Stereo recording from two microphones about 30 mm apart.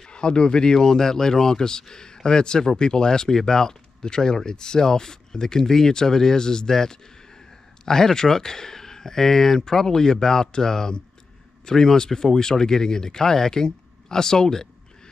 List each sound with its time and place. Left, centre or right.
0.0 s speech: left
0.7 s speech: centre